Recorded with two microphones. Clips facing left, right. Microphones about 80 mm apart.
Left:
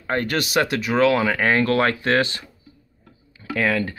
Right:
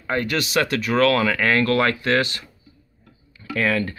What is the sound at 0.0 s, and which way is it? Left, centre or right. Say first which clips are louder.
Speech: even; left.